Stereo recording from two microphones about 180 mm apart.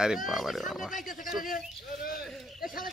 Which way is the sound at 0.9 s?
45° left (ahead or behind).